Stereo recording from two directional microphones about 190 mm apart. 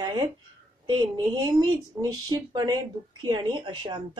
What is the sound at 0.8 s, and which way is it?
Speech, 20° right (ahead or behind).